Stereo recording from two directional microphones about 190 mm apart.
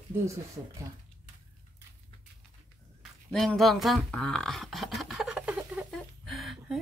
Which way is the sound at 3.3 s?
Centre (ahead or behind).